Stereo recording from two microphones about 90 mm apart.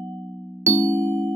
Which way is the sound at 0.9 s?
35° right (ahead or behind).